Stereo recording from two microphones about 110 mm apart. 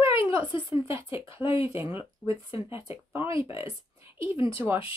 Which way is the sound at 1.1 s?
55° left (ahead or behind).